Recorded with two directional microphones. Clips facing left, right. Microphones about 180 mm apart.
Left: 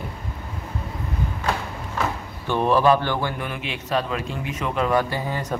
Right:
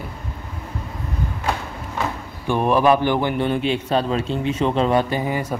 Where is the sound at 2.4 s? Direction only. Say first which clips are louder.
Right 1 dB; 15° right (ahead or behind).